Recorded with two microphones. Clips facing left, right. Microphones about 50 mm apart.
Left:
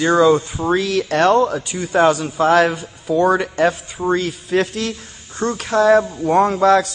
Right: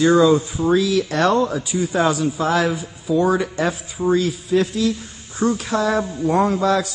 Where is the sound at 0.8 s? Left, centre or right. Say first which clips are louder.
Left 4 dB; left.